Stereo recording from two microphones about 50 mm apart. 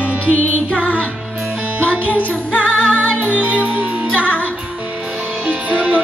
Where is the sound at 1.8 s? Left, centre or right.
Left.